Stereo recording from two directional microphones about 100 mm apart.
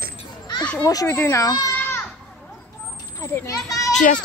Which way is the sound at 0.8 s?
35° left (ahead or behind).